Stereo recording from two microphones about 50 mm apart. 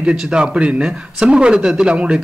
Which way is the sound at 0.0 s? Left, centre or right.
Centre.